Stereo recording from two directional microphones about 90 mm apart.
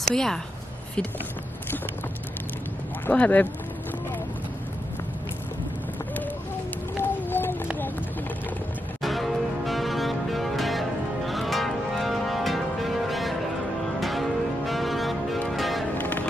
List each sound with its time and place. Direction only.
0.0 s speech: 5° left (ahead or behind)
3.1 s speech: 15° left (ahead or behind)
7.0 s a sound: 25° left (ahead or behind)
9.0 s music: centre (ahead or behind)
16.0 s music: 20° left (ahead or behind)